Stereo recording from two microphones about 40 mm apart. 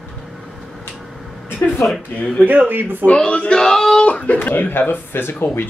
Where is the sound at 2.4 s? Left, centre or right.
Right.